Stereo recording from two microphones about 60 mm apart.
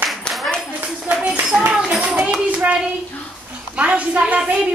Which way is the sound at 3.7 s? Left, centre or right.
Right.